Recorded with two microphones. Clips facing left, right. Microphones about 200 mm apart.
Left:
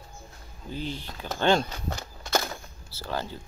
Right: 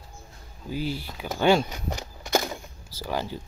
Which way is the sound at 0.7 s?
10° right (ahead or behind).